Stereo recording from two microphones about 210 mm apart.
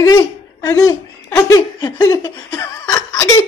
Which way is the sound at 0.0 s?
15° left (ahead or behind).